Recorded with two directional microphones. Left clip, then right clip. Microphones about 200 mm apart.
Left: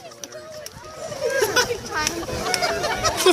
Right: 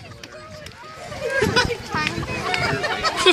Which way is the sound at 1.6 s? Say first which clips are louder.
Right 1 dB; 60° left (ahead or behind).